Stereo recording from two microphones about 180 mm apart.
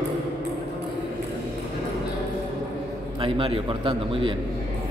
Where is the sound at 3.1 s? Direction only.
30° right (ahead or behind).